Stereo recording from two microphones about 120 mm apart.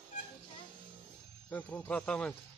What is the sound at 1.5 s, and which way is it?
Speech, 20° left (ahead or behind).